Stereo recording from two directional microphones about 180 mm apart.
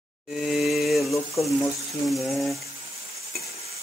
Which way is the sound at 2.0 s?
Centre (ahead or behind).